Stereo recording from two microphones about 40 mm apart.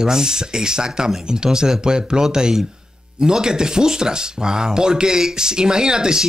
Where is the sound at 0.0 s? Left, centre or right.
Centre.